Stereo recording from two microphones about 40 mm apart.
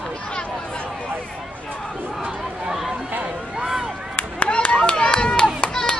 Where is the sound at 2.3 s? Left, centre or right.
Centre.